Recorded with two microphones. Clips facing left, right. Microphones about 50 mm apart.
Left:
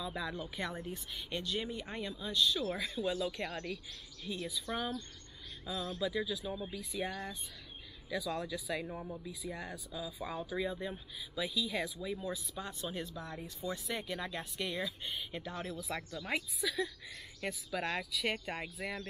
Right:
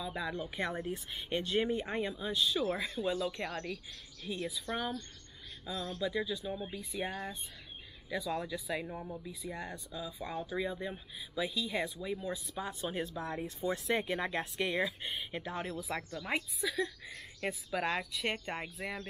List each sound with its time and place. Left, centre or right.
0.0 s speech: centre
0.6 s speech: right
2.7 s speech: centre
6.5 s speech: right
6.8 s speech: centre
7.1 s speech: right
8.1 s speech: centre
13.0 s speech: right
15.3 s speech: centre